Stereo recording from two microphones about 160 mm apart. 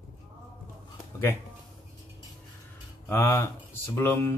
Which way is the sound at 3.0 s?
20° left (ahead or behind).